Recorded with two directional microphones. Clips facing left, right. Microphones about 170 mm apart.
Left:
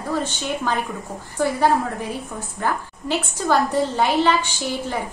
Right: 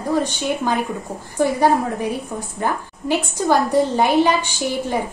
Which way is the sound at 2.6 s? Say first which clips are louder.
Right 1 dB; 15° right (ahead or behind).